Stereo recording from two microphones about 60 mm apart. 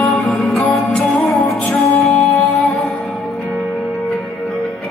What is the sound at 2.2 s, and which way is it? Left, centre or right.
Music, centre.